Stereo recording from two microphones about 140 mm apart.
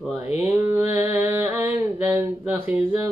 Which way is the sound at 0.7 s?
10° right (ahead or behind).